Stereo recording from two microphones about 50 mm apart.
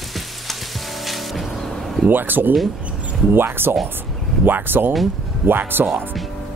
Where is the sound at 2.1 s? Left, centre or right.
Right.